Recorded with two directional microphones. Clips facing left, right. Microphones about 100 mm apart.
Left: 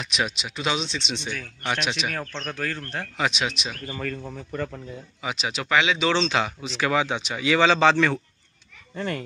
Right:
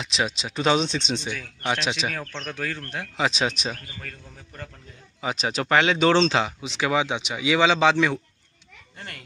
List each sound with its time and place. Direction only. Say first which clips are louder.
0.0 s speech: right 1 dB; 25° right (ahead or behind); by 1.2 s 45° right (ahead or behind)
1.2 s speech: right 1 dB; 15° right (ahead or behind)
2.1 s speech: left 1 dB; 5° left (ahead or behind)
2.5 s speech: even; 10° right (ahead or behind)
3.3 s speech: right 4 dB; 35° right (ahead or behind)
3.9 s speech: left 10 dB; 80° left
5.2 s speech: right 3 dB; 40° right (ahead or behind)
6.6 s speech: even; 20° right (ahead or behind)